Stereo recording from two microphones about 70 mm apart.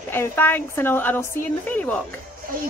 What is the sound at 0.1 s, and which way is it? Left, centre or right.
A woman's voice, left.